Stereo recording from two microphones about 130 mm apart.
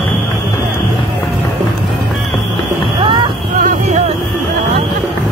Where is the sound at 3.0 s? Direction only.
40° right (ahead or behind).